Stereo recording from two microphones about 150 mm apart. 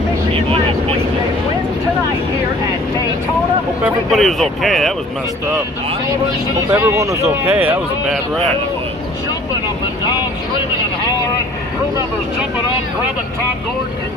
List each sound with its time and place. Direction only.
3.8 s speech: centre (ahead or behind)
6.7 s speech: 20° right (ahead or behind)